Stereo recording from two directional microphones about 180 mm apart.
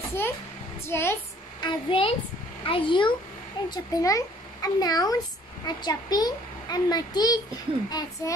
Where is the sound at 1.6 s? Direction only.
30° left (ahead or behind).